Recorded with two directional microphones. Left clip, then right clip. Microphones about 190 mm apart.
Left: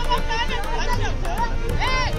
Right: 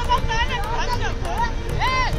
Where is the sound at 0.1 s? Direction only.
15° left (ahead or behind).